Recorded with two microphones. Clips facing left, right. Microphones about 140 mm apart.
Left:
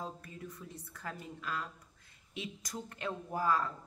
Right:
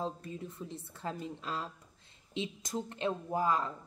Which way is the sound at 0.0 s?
25° right (ahead or behind).